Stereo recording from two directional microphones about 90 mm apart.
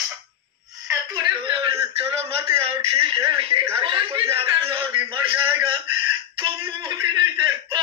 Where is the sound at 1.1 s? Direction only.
65° right (ahead or behind); by 4.9 s 80° right.